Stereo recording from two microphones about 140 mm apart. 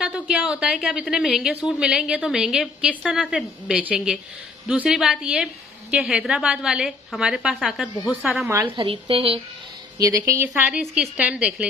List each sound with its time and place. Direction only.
0.0 s a woman's voice: 5° right (ahead or behind)
8.8 s speech: 35° right (ahead or behind)
9.9 s a woman's voice: 25° right (ahead or behind)
10.5 s a woman's voice: 5° right (ahead or behind)